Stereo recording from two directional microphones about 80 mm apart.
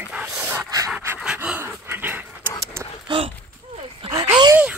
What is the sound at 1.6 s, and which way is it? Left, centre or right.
Dog, right.